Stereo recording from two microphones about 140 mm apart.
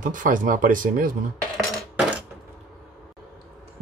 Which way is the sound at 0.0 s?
70° right (ahead or behind).